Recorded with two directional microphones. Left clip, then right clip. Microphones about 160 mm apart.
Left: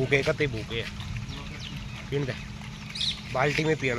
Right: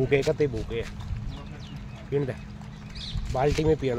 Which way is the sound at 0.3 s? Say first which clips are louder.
Right 2 dB; 35° right (ahead or behind).